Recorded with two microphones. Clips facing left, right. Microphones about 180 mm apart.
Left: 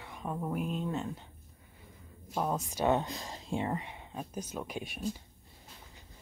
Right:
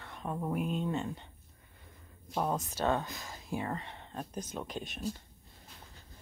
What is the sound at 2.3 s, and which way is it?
Speech, 5° left (ahead or behind).